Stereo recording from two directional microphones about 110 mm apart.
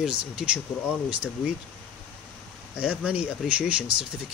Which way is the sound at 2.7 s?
10° right (ahead or behind).